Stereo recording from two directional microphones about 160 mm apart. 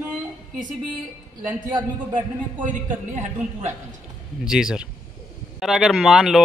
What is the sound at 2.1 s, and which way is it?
A man's voice, 55° right (ahead or behind).